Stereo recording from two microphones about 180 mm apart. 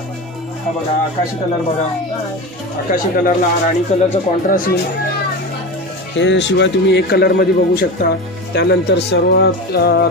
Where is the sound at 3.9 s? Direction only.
40° left (ahead or behind).